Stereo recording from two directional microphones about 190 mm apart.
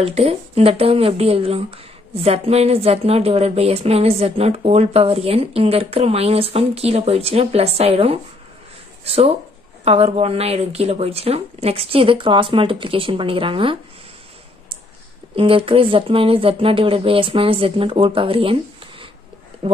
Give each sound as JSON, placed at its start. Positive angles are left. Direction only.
{"t": 0.0, "sound": "speech", "side_deg": -30}
{"t": 15.3, "sound": "speech", "side_deg": -30}